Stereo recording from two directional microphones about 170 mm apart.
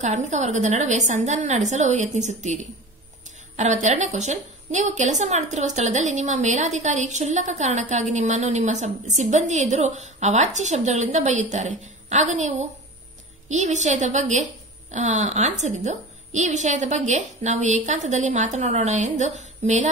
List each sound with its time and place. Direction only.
0.0 s a woman's voice: 45° right (ahead or behind)